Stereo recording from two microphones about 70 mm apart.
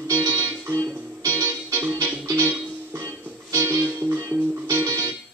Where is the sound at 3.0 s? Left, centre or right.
Right.